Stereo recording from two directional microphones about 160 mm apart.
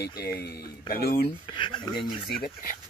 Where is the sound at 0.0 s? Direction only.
75° left (ahead or behind).